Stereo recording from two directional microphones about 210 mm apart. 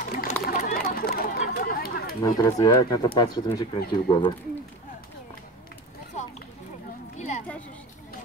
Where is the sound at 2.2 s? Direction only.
15° left (ahead or behind).